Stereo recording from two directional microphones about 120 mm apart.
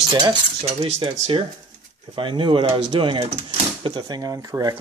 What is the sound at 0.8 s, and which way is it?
Speech, 45° right (ahead or behind).